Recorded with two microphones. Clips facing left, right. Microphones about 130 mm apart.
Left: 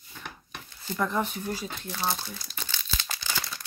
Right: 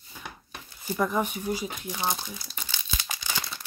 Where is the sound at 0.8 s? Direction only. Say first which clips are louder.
Right 2 dB; 10° right (ahead or behind).